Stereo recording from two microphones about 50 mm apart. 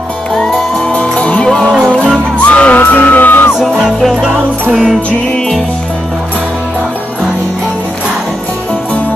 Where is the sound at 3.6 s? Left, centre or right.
Centre.